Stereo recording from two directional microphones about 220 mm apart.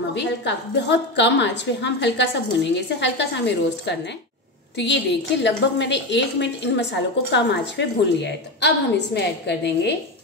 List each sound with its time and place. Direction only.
0.1 s a woman's voice: 50° left (ahead or behind)